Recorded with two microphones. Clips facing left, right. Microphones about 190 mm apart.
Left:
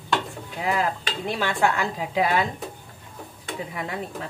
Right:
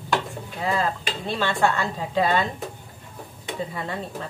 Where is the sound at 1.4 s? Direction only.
10° left (ahead or behind).